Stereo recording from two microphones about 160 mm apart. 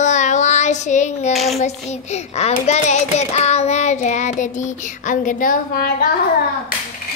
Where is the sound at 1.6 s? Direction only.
45° left (ahead or behind); by 6.0 s 70° left (ahead or behind).